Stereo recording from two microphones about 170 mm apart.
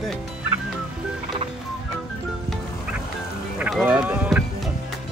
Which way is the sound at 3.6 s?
10° right (ahead or behind).